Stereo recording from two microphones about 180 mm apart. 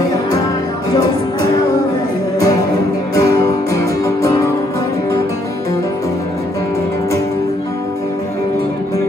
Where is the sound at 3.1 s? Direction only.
20° left (ahead or behind).